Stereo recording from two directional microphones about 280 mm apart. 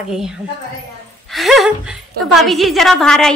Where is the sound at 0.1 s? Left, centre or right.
Centre.